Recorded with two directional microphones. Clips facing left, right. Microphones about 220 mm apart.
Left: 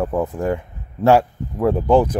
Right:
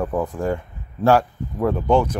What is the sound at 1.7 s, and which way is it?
Speech, 30° left (ahead or behind).